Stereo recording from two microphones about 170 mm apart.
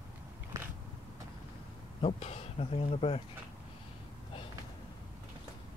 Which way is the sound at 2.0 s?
35° left (ahead or behind).